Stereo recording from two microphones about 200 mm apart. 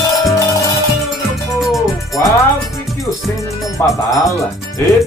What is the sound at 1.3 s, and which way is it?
Music, centre (ahead or behind).